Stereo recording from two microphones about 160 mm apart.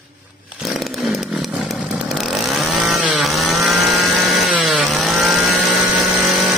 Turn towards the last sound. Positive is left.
turn(degrees=0)  # may be behind; listen again after turning